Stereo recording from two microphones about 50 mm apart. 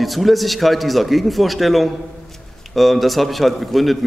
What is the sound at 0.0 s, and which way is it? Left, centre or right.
A man's voice, centre.